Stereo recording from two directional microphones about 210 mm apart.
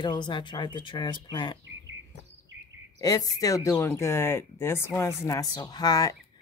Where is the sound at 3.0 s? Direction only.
15° left (ahead or behind).